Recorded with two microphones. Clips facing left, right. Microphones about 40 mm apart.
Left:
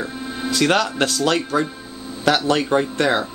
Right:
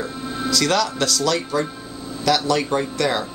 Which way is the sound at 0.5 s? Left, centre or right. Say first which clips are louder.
Left 2 dB; left.